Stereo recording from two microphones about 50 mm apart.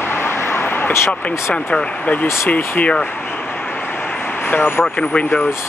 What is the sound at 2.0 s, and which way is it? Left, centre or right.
Speech, left.